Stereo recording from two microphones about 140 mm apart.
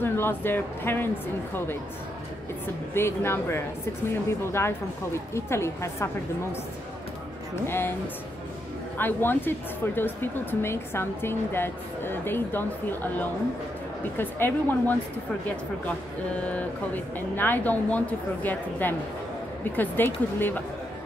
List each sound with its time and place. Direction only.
0.0 s speech: 15° left (ahead or behind)
2.9 s a woman's voice: 15° left (ahead or behind)
7.5 s speech: 15° left (ahead or behind)
8.9 s speech: 15° left (ahead or behind)
16.3 s speech: 10° left (ahead or behind)